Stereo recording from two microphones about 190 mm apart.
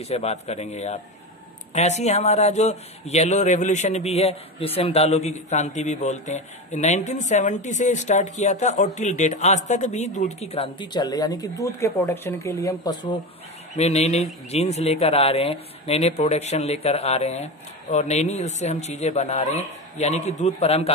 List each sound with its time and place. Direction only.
0.0 s a man's voice: 35° left (ahead or behind)
13.7 s a man's voice: 35° left (ahead or behind)